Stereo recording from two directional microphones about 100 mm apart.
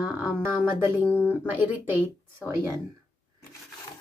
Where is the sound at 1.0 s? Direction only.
20° left (ahead or behind).